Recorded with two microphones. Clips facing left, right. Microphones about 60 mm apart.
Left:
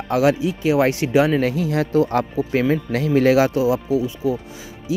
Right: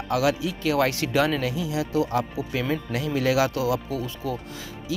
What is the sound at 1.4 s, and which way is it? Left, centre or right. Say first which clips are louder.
Speech: left 7 dB; left.